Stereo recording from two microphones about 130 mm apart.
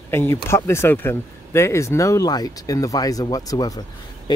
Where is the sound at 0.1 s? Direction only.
20° left (ahead or behind).